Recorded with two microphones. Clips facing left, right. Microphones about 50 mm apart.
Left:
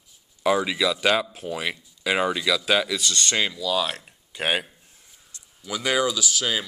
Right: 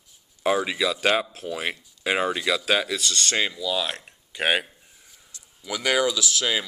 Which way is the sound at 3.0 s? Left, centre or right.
Left.